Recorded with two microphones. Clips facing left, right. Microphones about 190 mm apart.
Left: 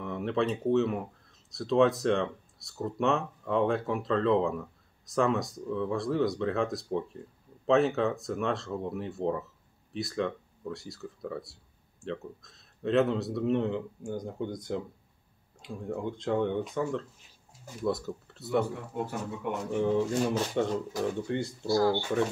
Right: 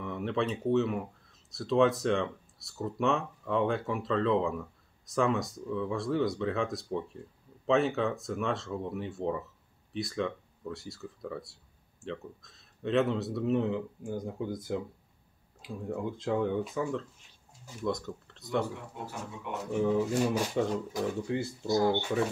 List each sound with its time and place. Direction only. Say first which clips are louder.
0.0 s speech: left 2 dB; centre (ahead or behind)
19.7 s speech: even; centre (ahead or behind)
21.6 s speech: left 1 dB; 20° right (ahead or behind)